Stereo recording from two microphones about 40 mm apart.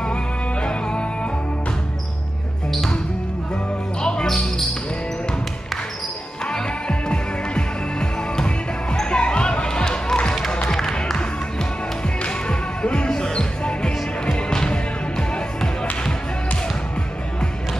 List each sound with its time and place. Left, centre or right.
0.0 s music: left
4.0 s basketball bounce: left
6.4 s music: left
12.2 s music: left